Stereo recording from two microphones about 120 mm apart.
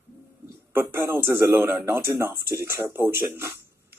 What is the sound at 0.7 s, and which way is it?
Speech, 20° right (ahead or behind).